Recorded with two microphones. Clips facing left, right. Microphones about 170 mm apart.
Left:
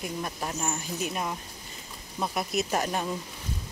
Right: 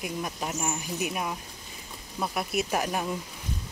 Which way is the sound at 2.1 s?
Centre (ahead or behind).